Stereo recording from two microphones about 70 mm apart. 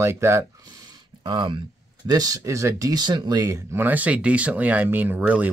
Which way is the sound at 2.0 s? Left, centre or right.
Right.